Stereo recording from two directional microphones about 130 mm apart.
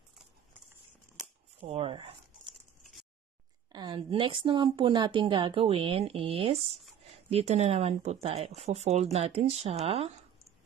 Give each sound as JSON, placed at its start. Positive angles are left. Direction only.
{"t": 1.7, "sound": "speech", "side_deg": -45}
{"t": 2.8, "sound": "a sound", "side_deg": 0}
{"t": 3.7, "sound": "a woman's voice", "side_deg": -30}